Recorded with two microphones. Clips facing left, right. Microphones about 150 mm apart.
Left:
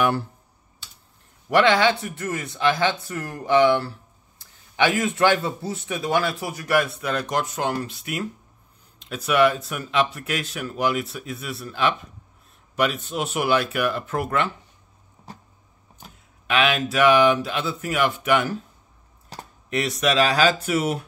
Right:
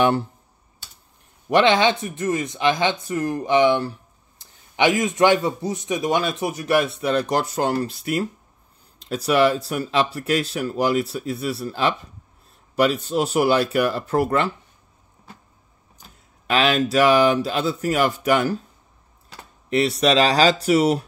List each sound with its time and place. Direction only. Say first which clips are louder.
0.0 s a man's voice: right 3 dB; 20° right (ahead or behind)
1.5 s a man's voice: right 1 dB; 20° right (ahead or behind)
16.4 s speech: right 2 dB; 35° right (ahead or behind)
19.7 s speech: right 4 dB; 30° right (ahead or behind)